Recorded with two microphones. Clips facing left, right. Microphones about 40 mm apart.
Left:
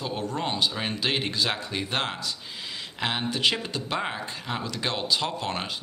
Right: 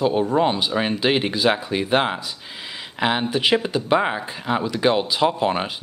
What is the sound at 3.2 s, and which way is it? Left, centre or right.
Speech, centre.